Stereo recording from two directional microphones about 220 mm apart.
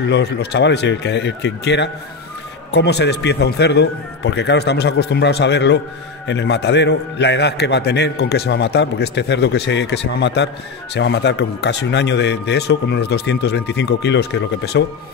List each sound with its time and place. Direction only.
0.1 s a man's voice: 50° left (ahead or behind)